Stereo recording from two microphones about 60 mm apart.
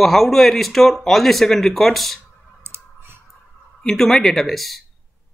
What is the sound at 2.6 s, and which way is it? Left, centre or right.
Clicking, right.